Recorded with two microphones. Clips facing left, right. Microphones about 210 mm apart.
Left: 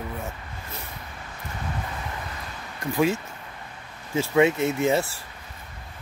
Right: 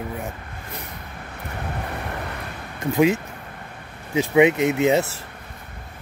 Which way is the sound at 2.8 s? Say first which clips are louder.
Right 5 dB; 20° right (ahead or behind).